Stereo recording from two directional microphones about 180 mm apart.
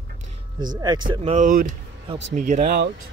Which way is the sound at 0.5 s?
25° right (ahead or behind).